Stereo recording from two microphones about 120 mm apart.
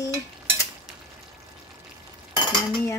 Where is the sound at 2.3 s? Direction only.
35° left (ahead or behind).